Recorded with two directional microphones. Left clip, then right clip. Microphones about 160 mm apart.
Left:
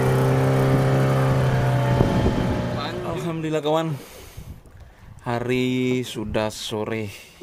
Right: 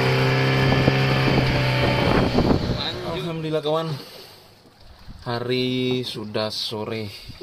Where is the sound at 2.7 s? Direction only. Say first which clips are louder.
Even; 15° left (ahead or behind); by 3.9 s 30° left (ahead or behind).